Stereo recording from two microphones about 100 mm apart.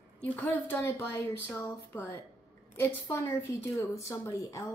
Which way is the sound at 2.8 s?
25° left (ahead or behind).